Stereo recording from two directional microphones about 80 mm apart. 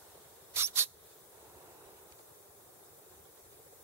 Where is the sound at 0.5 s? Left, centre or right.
Right.